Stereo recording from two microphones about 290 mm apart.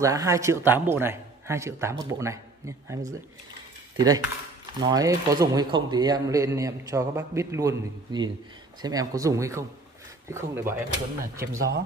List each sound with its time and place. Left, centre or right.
0.0 s speech: centre
11.3 s speech: right